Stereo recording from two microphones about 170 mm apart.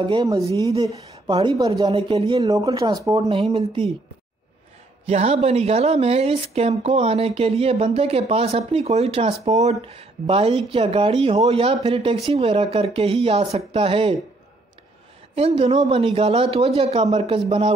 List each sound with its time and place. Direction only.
0.0 s speech: 25° right (ahead or behind)
2.5 s speech: 20° right (ahead or behind)
3.3 s speech: 35° right (ahead or behind)
5.0 s speech: 40° right (ahead or behind)
15.3 s speech: 35° right (ahead or behind)